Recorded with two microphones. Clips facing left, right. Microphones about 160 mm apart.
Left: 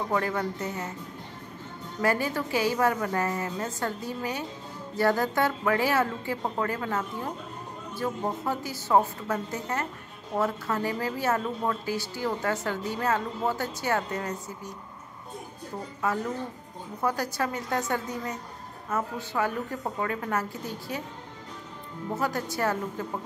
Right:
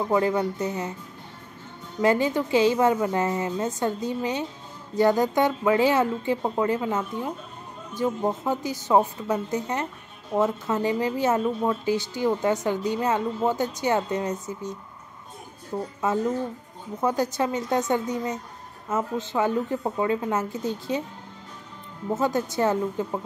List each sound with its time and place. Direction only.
0.1 s speech: 20° right (ahead or behind)
2.0 s speech: 20° right (ahead or behind)
16.0 s speech: 25° right (ahead or behind)
22.1 s speech: 20° right (ahead or behind)